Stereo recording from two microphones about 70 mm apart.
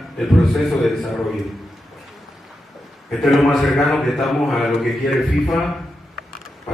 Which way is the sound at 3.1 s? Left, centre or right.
Centre.